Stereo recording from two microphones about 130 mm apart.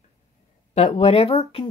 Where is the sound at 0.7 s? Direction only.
55° left (ahead or behind).